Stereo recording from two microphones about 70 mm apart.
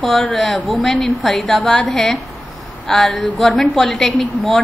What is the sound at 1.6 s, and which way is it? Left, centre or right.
Speech, centre.